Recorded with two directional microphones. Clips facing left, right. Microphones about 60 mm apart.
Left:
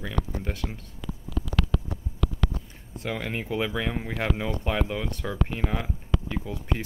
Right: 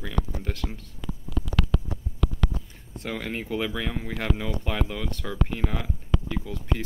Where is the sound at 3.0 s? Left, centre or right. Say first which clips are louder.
Left 1 dB; centre.